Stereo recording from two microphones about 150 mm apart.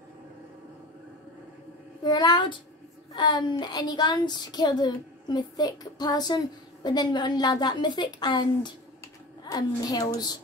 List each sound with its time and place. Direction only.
2.0 s speech: 30° left (ahead or behind)